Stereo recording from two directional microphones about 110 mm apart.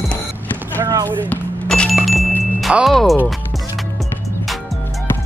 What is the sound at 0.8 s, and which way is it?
Speech, 35° right (ahead or behind).